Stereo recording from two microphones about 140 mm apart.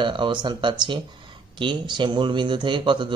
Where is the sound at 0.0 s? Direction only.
35° right (ahead or behind).